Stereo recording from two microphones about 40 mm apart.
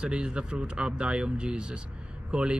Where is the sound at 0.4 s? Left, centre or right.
Right.